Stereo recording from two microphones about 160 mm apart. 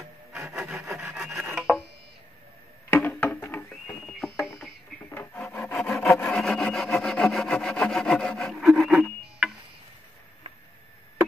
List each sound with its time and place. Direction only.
0.3 s rub: 5° right (ahead or behind)
2.9 s music: 10° left (ahead or behind)
4.4 s a sound: 20° left (ahead or behind)
5.1 s rub: 10° left (ahead or behind)
5.4 s wood: 5° left (ahead or behind)